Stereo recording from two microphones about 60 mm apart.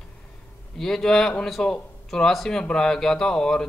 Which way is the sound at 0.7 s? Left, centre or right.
Centre.